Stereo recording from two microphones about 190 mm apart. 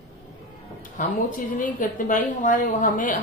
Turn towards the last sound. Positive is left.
turn(degrees=45)  # may be behind; listen again after turning